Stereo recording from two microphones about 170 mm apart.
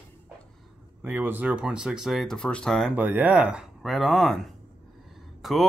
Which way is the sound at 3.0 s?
10° right (ahead or behind).